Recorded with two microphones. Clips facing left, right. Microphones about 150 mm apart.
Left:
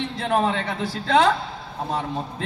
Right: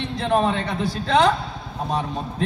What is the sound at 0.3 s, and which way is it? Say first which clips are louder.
Speech: right 2 dB; 20° right (ahead or behind).